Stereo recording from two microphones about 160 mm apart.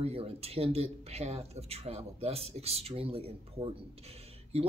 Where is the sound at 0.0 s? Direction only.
40° right (ahead or behind).